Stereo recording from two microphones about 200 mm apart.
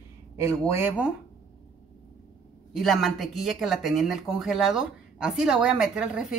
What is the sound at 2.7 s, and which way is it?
Speech, centre (ahead or behind).